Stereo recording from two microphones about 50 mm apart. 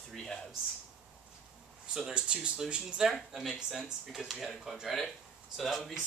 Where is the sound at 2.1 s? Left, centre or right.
Right; by 5.9 s centre.